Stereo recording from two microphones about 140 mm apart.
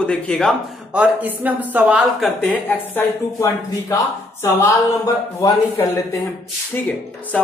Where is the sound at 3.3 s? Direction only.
25° left (ahead or behind).